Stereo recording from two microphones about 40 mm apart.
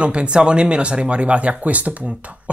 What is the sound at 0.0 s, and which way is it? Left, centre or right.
Speech, right.